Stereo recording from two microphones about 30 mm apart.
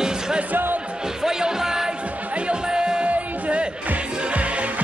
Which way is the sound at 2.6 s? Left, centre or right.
Right.